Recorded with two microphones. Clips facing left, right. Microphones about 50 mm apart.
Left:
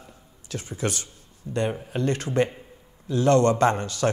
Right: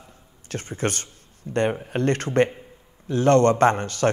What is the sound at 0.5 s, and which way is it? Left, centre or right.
A man's voice, right.